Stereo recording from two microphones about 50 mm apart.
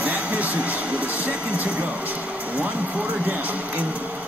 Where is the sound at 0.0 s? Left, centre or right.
Right.